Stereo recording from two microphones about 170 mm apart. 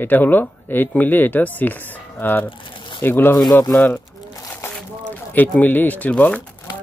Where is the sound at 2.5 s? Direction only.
30° left (ahead or behind).